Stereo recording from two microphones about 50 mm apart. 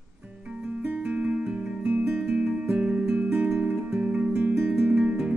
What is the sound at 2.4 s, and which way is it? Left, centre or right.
Music, right.